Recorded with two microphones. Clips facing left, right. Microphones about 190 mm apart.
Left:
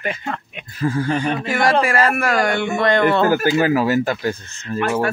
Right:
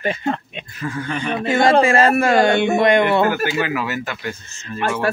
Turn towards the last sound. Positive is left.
turn(degrees=35)  # may be behind; listen again after turning